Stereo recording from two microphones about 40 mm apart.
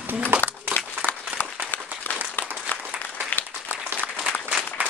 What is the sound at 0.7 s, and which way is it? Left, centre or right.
Applause, left.